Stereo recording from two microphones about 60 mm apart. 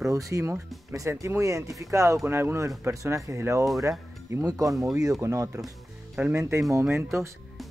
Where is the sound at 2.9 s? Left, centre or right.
Right.